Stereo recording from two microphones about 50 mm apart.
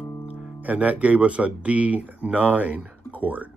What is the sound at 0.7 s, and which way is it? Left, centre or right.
Speech, right.